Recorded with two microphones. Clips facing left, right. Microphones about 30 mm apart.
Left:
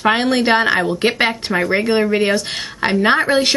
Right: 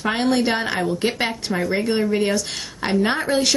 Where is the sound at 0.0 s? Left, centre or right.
Left.